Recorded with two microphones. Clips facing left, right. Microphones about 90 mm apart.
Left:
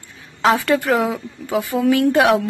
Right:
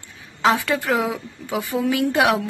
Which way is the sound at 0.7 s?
Centre (ahead or behind).